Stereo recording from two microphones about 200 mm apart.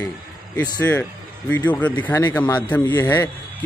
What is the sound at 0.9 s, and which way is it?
A man's voice, 5° left (ahead or behind).